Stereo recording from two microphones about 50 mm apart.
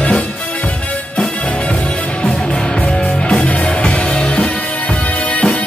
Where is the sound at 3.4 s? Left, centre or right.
Left.